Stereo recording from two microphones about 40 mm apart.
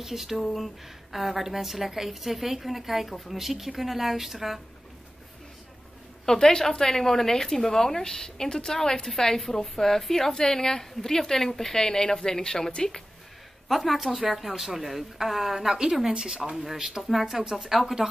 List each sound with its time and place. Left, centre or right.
0.0 s a woman's voice: centre
0.4 s a woman's voice: centre
6.2 s a woman's voice: centre
13.7 s a woman's voice: centre